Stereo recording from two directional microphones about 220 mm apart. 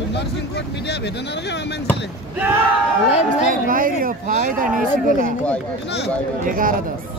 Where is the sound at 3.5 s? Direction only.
40° right (ahead or behind).